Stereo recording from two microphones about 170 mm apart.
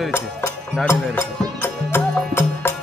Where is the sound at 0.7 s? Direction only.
15° left (ahead or behind).